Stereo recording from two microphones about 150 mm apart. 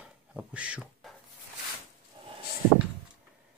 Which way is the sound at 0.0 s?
5° right (ahead or behind).